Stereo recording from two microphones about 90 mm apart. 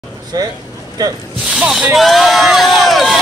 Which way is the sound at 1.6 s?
10° right (ahead or behind).